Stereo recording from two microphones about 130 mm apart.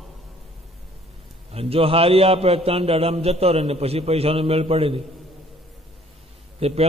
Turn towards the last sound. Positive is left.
turn(degrees=-50)  # may be behind; listen again after turning